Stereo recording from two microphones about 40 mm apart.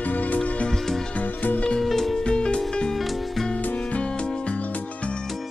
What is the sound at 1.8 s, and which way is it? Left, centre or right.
Music, centre.